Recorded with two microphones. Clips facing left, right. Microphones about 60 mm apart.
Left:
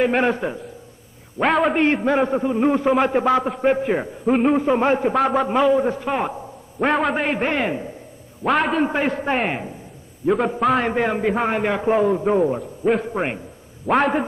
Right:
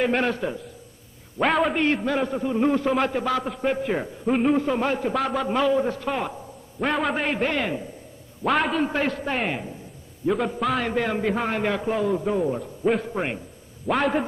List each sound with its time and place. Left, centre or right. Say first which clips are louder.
0.0 s a man's voice: left 4 dB; centre
1.4 s a man's voice: left 4 dB; centre
1.9 s a man's voice: left 5 dB; left
2.5 s a man's voice: left 2 dB; centre
4.3 s a man's voice: left 4 dB; centre
4.6 s a man's voice: left 5 dB; left
5.1 s a man's voice: left 5 dB; centre
6.9 s a man's voice: left 4 dB; centre
7.3 s a man's voice: left 3 dB; left
8.5 s a man's voice: left 3 dB; centre
8.8 s a man's voice: left 4 dB; left
10.2 s a man's voice: left 4 dB; centre
10.8 s a man's voice: left 4 dB; left
12.5 s a man's voice: left 3 dB; centre